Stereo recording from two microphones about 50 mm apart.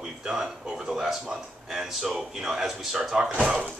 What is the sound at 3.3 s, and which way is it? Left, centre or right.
Speech, right.